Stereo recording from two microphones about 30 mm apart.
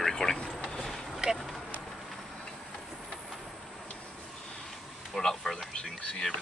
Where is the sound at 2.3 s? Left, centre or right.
Centre.